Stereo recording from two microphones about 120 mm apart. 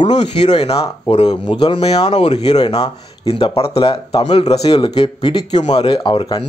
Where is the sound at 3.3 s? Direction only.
50° left (ahead or behind).